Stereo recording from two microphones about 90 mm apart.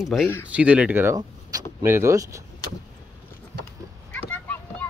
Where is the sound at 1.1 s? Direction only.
40° right (ahead or behind).